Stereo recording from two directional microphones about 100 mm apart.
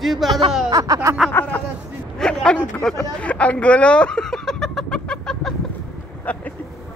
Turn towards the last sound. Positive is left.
turn(degrees=15)  # may be behind; listen again after turning